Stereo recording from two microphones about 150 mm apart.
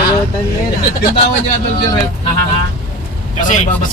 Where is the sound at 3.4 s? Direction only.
60° left (ahead or behind).